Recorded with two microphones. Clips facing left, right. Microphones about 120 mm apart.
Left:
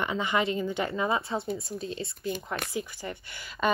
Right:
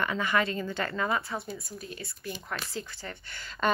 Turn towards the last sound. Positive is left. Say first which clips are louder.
# left 1 dB
turn(degrees=15)  # may be behind; listen again after turning